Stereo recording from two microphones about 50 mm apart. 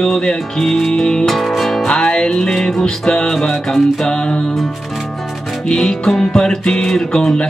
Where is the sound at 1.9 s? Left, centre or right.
Centre.